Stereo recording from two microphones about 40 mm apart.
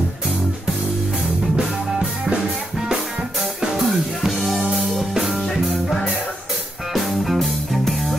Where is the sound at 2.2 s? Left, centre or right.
Centre.